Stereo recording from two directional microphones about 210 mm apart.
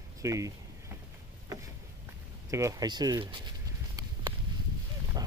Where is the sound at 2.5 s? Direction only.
15° right (ahead or behind).